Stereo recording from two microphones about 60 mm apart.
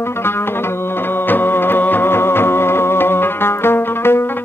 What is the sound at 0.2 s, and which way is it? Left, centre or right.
Music, left.